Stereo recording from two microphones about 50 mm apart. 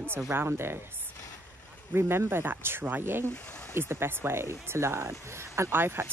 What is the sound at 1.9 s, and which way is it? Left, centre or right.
Speech, right.